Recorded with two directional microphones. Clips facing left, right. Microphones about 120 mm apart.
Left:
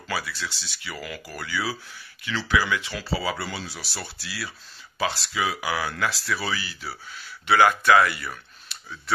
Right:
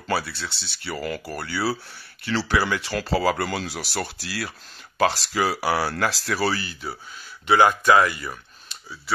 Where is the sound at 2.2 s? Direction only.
35° right (ahead or behind).